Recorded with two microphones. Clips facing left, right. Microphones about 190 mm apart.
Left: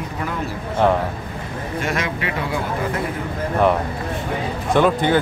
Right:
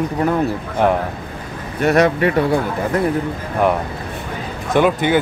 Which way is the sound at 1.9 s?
65° right (ahead or behind).